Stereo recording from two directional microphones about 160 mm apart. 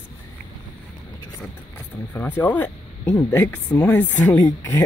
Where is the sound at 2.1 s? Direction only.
10° left (ahead or behind).